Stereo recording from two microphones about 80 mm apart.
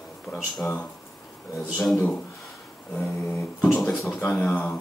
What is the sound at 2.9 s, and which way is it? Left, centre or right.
Speech, centre.